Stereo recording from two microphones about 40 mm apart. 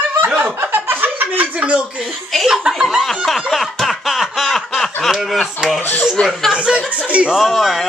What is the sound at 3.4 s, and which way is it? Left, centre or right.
Snicker, centre.